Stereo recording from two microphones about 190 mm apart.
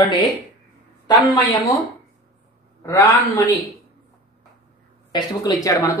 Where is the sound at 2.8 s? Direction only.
15° left (ahead or behind).